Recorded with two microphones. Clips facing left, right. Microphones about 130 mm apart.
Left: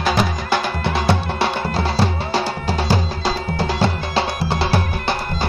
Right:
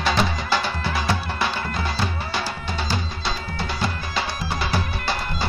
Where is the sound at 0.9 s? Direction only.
30° left (ahead or behind).